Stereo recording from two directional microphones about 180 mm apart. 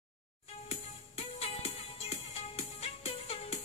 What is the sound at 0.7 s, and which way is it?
Music, 35° left (ahead or behind).